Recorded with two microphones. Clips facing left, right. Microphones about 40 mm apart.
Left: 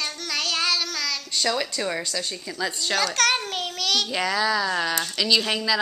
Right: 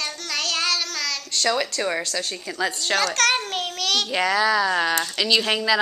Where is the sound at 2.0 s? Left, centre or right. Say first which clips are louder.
Right 2 dB; centre.